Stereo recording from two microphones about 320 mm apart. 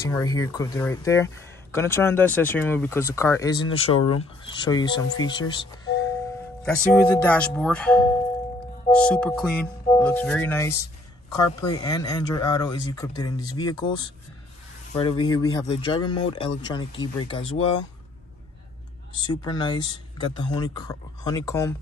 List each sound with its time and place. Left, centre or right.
0.0 s speech: centre
19.4 s speech: centre